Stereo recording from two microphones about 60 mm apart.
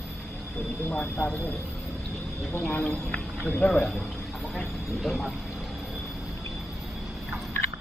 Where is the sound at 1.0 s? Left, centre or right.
Left.